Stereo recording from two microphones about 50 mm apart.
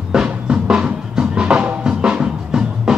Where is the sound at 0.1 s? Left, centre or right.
Centre.